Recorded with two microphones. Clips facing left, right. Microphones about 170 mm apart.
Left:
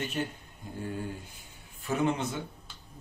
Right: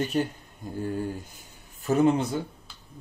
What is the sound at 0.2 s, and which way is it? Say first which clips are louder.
Speech: right 7 dB; 35° right (ahead or behind).